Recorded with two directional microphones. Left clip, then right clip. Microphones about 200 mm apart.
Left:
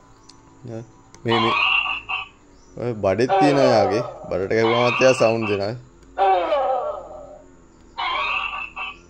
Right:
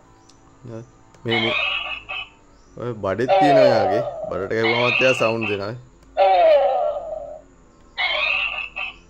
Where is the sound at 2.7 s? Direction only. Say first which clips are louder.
Left 3 dB; 5° left (ahead or behind).